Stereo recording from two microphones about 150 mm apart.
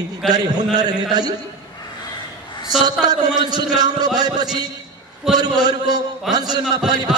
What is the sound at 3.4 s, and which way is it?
A man's voice, 25° right (ahead or behind).